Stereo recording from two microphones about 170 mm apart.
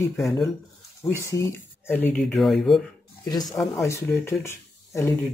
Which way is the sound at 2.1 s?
Centre (ahead or behind).